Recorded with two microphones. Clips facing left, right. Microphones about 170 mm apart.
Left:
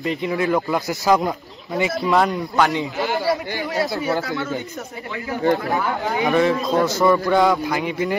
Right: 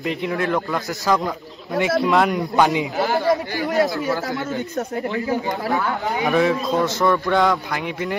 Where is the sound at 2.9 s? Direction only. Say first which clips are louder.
Right 2 dB; 40° right (ahead or behind).